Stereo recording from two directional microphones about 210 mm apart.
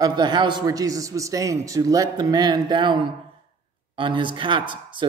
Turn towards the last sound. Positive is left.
turn(degrees=-25)  # may be behind; listen again after turning